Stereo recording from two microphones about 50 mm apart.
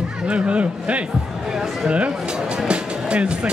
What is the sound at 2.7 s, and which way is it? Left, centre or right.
Music, right.